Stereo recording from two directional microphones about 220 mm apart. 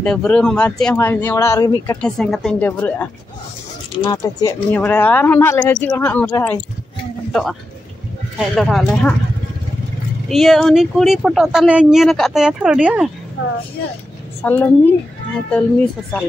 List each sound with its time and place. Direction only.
0.0 s speech: 5° left (ahead or behind)
2.0 s speech: centre (ahead or behind)
4.0 s speech: 15° left (ahead or behind)
8.4 s speech: centre (ahead or behind)
10.2 s speech: centre (ahead or behind)
13.4 s speech: 60° left (ahead or behind)
14.4 s speech: 10° left (ahead or behind)